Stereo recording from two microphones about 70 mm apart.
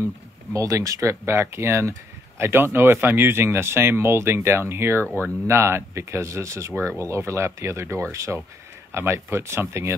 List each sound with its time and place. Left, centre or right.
0.0 s speech: right